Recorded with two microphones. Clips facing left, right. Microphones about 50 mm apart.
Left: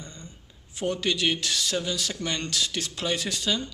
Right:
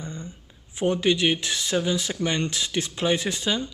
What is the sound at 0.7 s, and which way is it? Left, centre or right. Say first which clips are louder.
Speech: right 5 dB; right.